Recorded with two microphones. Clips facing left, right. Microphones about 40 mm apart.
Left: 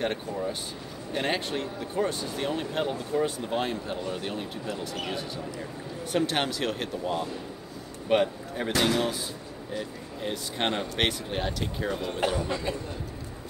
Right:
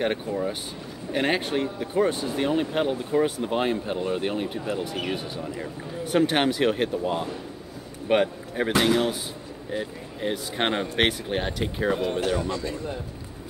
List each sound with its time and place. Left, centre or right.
0.0 s speech: centre
12.4 s a man's voice: centre